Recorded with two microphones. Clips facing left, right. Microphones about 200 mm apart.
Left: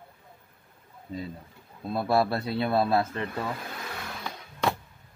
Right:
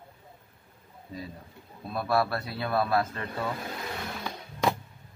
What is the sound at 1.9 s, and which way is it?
Speech, 25° left (ahead or behind).